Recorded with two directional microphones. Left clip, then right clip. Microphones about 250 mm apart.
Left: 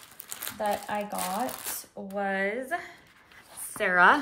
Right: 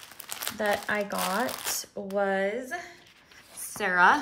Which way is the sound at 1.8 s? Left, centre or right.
Centre.